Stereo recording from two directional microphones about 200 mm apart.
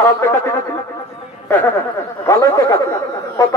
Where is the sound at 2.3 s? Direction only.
15° left (ahead or behind).